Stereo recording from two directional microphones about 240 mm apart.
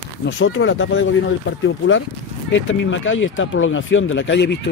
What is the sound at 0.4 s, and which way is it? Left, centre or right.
Speech, left.